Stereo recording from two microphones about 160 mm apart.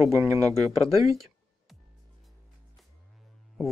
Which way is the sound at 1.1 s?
Centre (ahead or behind).